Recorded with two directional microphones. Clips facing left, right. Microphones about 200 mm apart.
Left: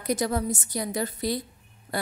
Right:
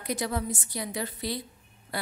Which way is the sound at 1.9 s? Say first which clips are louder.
Left 4 dB; 45° left (ahead or behind).